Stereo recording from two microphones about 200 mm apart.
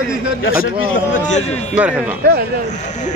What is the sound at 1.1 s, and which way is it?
Speech, 35° left (ahead or behind).